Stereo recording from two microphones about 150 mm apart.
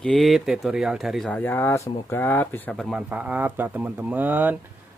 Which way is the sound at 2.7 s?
5° right (ahead or behind).